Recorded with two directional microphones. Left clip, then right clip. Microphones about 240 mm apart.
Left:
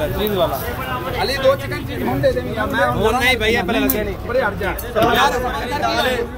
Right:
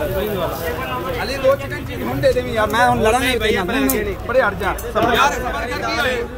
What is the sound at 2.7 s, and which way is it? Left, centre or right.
Speech, right.